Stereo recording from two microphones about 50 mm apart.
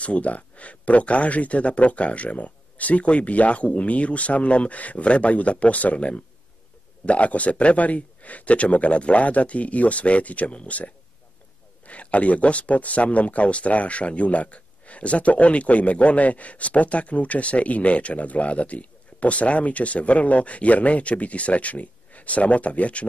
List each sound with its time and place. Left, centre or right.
0.0 s speech: left